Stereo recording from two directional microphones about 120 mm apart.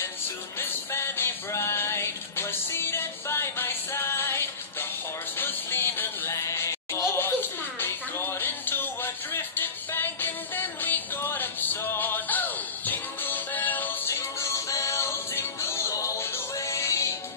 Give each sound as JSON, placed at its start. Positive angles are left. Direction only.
{"t": 0.6, "sound": "music", "side_deg": 20}
{"t": 14.4, "sound": "music", "side_deg": 25}